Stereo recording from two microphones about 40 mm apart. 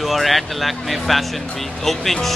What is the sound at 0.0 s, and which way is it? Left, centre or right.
Speech, centre.